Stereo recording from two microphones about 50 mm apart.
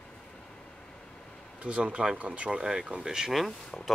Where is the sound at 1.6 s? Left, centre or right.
Right; by 3.5 s centre.